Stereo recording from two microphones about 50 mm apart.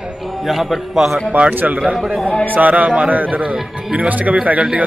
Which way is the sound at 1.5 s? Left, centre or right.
Right.